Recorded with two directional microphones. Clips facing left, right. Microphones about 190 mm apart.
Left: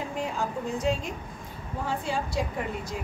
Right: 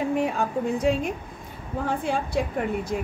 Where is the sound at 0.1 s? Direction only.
60° right (ahead or behind).